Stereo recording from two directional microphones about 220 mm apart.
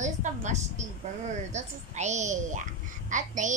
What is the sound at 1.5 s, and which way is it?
A woman's voice, 30° right (ahead or behind).